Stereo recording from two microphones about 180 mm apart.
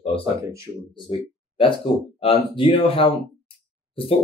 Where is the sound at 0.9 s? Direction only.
30° left (ahead or behind).